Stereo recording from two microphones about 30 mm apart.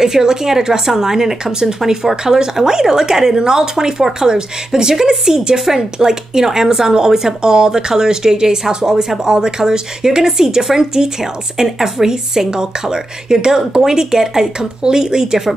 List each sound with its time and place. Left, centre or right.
0.0 s speech: centre